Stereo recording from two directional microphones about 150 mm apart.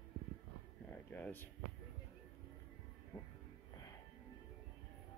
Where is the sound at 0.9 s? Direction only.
10° left (ahead or behind).